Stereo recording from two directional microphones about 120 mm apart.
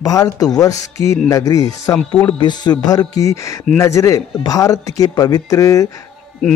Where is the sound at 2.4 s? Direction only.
35° left (ahead or behind).